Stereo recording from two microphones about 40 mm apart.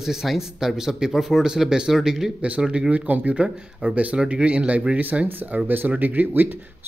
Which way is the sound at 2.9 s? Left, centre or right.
Right.